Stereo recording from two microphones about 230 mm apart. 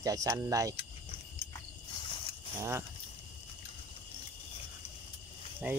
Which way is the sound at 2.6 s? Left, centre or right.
Centre.